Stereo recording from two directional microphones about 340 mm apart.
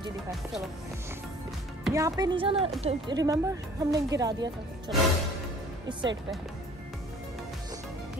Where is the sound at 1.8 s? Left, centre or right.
Centre.